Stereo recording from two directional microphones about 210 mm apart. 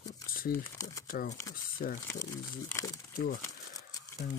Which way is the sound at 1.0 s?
45° left (ahead or behind).